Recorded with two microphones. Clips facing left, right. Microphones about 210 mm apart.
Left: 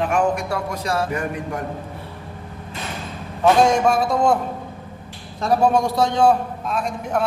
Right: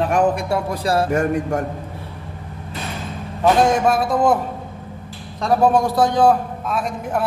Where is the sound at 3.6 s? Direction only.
5° right (ahead or behind).